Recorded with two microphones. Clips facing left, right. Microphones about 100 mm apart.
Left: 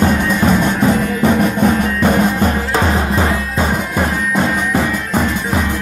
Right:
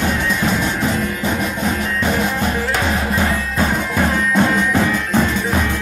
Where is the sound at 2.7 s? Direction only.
30° left (ahead or behind).